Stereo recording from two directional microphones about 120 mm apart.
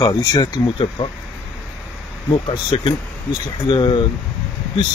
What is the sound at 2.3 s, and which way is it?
Speech, 45° left (ahead or behind).